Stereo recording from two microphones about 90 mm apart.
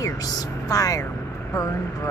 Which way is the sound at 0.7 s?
40° left (ahead or behind).